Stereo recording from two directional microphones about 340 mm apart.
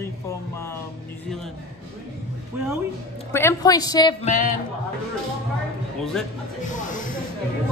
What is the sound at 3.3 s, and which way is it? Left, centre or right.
A woman's voice, centre.